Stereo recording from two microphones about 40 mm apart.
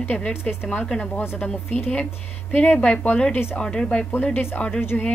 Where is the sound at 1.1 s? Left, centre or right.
Left.